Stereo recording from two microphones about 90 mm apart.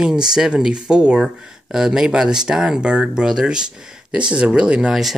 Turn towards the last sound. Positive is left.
turn(degrees=-5)  # may be behind; listen again after turning